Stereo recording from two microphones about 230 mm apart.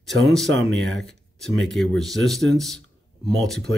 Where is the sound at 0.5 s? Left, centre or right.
Right.